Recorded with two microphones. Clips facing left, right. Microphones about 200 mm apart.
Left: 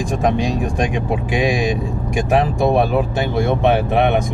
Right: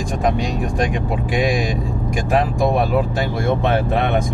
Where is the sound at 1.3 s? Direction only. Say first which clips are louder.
Left 1 dB; 20° left (ahead or behind).